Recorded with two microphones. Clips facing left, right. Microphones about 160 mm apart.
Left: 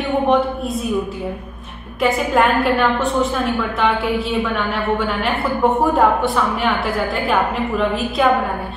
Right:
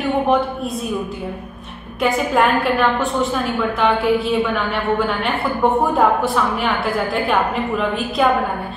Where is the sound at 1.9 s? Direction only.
Centre (ahead or behind).